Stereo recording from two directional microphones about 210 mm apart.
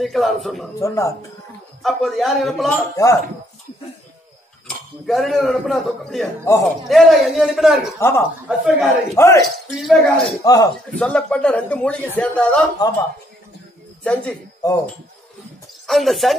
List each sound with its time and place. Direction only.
0.0 s speech: centre (ahead or behind)
0.7 s speech: 15° left (ahead or behind)
1.8 s speech: centre (ahead or behind)
4.6 s speech: centre (ahead or behind)
6.5 s speech: 10° left (ahead or behind)
6.9 s speech: centre (ahead or behind)
8.0 s speech: 10° left (ahead or behind)
8.5 s speech: 5° right (ahead or behind)
9.1 s speech: 15° left (ahead or behind)
9.8 s speech: centre (ahead or behind)
10.4 s speech: 15° left (ahead or behind)
11.0 s speech: 5° left (ahead or behind)
14.0 s speech: 5° left (ahead or behind)
15.9 s speech: centre (ahead or behind)